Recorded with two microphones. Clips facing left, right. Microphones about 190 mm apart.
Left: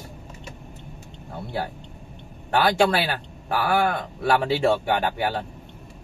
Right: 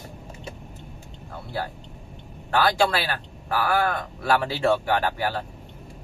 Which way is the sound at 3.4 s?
20° left (ahead or behind).